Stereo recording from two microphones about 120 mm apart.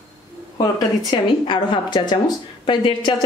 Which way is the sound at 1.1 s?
40° left (ahead or behind).